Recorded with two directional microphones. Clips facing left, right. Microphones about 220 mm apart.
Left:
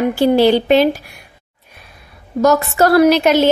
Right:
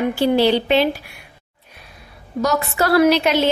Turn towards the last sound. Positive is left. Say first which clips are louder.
# left 4 dB
turn(degrees=45)  # may be behind; listen again after turning